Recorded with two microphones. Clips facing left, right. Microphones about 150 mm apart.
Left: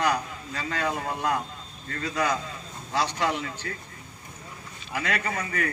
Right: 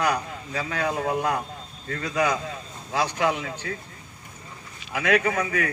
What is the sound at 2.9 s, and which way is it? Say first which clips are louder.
Speech: right 2 dB; 55° right (ahead or behind).